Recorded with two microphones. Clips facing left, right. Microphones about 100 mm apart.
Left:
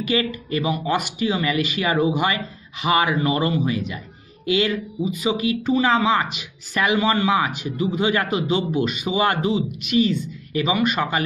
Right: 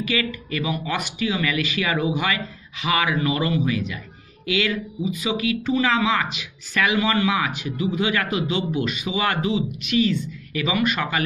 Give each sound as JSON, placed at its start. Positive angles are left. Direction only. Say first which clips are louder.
{"t": 0.1, "sound": "speech", "louder": "left 7 dB", "side_deg": 35}